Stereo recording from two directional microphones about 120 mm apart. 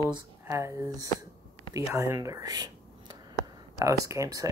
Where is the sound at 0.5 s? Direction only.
25° right (ahead or behind).